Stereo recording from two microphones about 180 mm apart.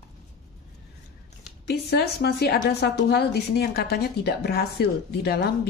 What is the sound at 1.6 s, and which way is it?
Speech, 65° left (ahead or behind).